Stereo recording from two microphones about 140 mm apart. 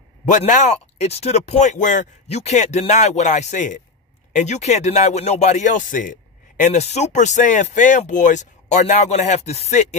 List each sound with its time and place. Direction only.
0.2 s speech: 60° left (ahead or behind)